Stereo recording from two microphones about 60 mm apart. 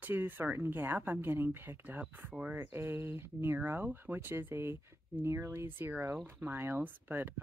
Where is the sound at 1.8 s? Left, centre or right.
Right.